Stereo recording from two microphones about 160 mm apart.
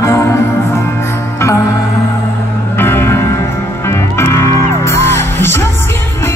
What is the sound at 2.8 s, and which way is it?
Music, 15° left (ahead or behind).